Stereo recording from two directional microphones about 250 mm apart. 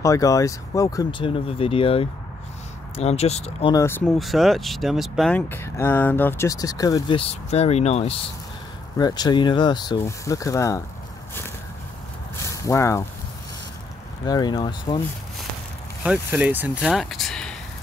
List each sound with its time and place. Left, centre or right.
0.0 s speech: centre
3.7 s speech: centre
12.6 s speech: centre
14.2 s speech: centre
16.0 s speech: centre